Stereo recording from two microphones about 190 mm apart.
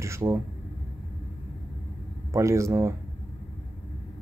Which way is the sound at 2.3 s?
15° right (ahead or behind).